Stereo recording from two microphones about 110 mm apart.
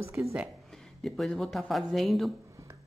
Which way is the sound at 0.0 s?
25° right (ahead or behind).